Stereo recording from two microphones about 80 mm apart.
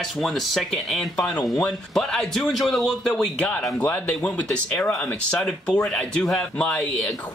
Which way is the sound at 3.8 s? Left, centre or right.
Left.